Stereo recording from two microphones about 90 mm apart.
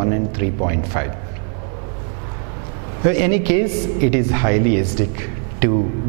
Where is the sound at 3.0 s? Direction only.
10° right (ahead or behind).